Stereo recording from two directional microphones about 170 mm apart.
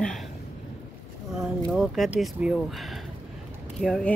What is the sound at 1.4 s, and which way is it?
Speech, centre (ahead or behind).